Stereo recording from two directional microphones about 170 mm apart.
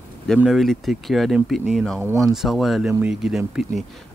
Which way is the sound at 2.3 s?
Centre (ahead or behind).